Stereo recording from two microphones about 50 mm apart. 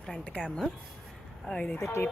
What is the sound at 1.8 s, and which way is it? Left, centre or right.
Speech, left.